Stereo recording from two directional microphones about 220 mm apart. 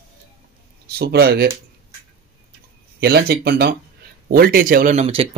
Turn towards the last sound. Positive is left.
turn(degrees=-30)  # may be behind; listen again after turning